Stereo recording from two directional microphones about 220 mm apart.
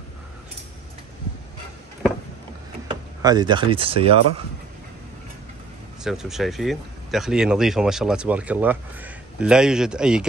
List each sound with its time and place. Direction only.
2.9 s speech: 20° right (ahead or behind)
6.0 s speech: centre (ahead or behind)